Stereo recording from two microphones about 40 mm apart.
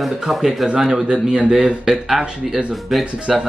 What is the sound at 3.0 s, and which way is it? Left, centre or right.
Speech, right.